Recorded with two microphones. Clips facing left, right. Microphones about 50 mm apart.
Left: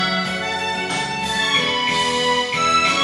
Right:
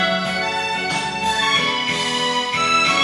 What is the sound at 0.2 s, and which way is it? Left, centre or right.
Music, right.